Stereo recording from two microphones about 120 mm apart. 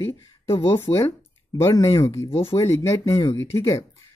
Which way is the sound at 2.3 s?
55° left (ahead or behind).